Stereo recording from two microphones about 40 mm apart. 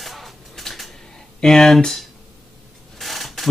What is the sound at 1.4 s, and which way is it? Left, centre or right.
Speech, centre.